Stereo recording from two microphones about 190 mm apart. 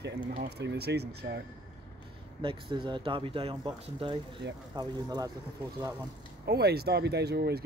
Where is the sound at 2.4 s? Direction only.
25° right (ahead or behind).